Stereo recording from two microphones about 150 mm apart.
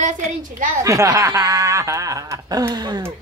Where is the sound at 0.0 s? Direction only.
55° right (ahead or behind).